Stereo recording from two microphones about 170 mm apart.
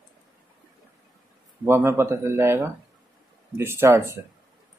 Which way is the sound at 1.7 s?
15° right (ahead or behind).